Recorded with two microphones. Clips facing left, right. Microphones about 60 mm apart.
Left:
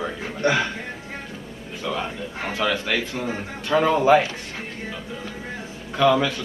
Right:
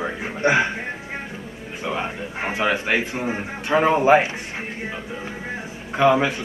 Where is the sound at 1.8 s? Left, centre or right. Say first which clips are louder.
Right 1 dB; right.